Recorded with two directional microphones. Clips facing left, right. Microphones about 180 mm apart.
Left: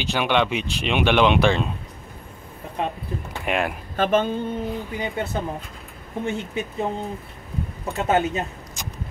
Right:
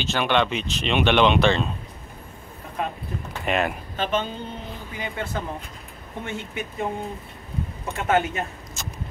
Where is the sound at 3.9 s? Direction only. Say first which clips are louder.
Left 8 dB; 50° left (ahead or behind).